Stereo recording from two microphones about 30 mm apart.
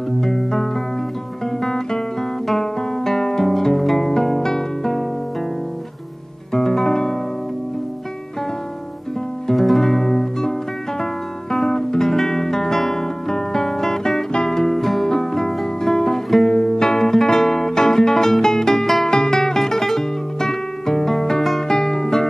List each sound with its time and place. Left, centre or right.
0.2 s music: centre
2.4 s guitar: centre
3.0 s guitar: centre
3.7 s music: centre
4.1 s music: centre
6.5 s music: centre
9.6 s music: centre
9.8 s music: centre
11.7 s guitar: centre
13.3 s music: centre
14.7 s music: centre